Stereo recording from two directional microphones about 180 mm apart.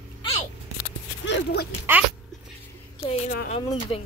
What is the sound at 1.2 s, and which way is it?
Speech, 65° left (ahead or behind).